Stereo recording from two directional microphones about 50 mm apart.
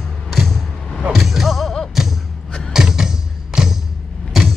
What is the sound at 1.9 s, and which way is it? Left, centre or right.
Thump, centre.